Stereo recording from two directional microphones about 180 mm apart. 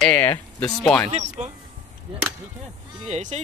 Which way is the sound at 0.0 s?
10° left (ahead or behind).